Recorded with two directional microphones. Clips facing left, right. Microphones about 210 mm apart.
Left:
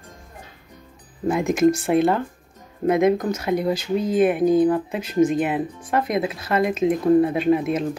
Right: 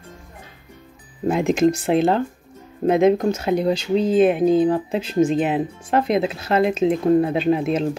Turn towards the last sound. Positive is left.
turn(degrees=-25)  # may be behind; listen again after turning